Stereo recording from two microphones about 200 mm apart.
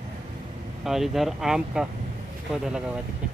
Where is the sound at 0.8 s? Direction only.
Centre (ahead or behind).